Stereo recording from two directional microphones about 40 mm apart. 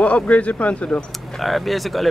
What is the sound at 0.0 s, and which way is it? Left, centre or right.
Speech, left.